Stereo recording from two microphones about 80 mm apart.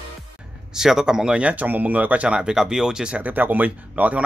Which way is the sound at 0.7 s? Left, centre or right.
Centre.